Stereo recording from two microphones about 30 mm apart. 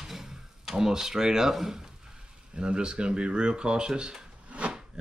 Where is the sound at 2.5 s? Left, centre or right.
Right.